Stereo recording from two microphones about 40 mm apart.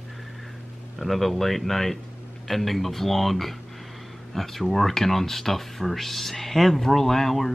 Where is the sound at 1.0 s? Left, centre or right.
Centre.